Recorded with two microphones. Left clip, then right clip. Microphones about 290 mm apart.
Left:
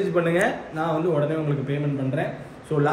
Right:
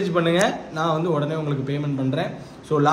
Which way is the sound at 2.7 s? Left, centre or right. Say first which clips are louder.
Right 3 dB; centre.